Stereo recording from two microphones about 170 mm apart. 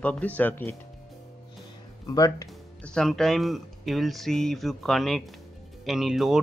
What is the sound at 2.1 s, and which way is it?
Speech, 20° left (ahead or behind).